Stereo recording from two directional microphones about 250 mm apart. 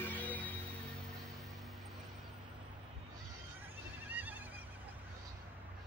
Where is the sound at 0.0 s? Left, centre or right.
Centre.